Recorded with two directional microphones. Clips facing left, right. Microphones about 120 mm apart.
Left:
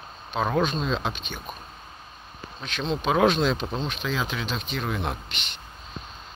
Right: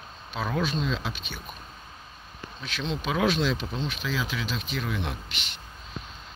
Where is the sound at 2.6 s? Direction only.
55° left (ahead or behind).